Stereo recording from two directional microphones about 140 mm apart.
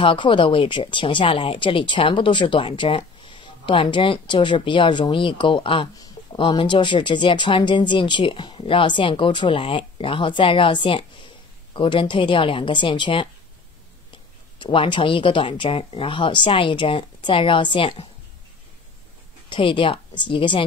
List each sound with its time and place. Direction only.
0.0 s speech: 35° left (ahead or behind)
5.9 s a sound: 25° left (ahead or behind)
6.4 s speech: 35° left (ahead or behind)
14.6 s speech: 35° left (ahead or behind)
19.5 s speech: 35° left (ahead or behind)